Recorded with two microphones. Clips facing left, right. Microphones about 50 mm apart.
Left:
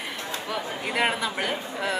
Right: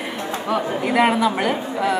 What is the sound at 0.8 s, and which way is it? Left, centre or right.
A woman's voice, centre.